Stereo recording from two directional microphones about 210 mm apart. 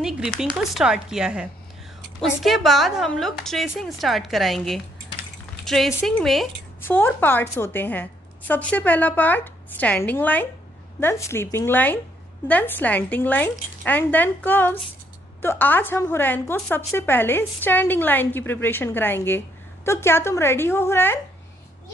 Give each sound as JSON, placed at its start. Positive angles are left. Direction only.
{"t": 0.0, "sound": "a woman's voice", "side_deg": -5}